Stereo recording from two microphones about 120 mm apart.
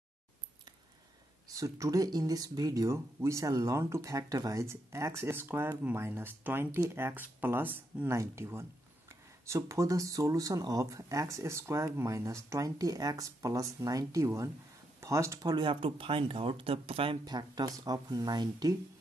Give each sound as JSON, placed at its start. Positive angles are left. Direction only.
{"t": 1.5, "sound": "speech", "side_deg": -30}
{"t": 17.3, "sound": "speech", "side_deg": -35}